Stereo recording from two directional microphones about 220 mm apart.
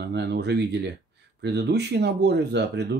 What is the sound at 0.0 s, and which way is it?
Speech, 50° right (ahead or behind).